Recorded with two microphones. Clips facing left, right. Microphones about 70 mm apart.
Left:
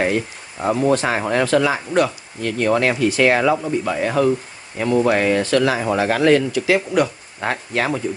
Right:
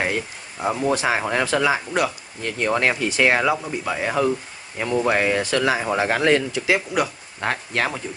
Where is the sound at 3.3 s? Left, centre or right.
Centre; by 6.8 s right.